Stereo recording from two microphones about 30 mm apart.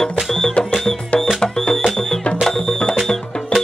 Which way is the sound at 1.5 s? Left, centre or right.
Left.